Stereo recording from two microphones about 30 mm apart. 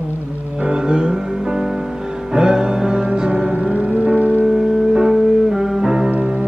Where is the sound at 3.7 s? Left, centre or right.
Right.